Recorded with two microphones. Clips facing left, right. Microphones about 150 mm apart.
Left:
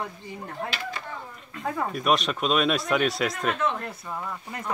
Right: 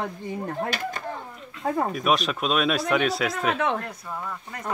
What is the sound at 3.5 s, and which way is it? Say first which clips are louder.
Speech: right 2 dB; 70° right (ahead or behind).